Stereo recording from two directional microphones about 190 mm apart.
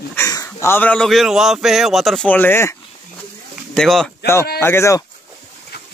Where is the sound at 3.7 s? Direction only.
Centre (ahead or behind).